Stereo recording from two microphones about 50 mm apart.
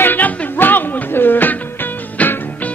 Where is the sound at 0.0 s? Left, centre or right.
Left.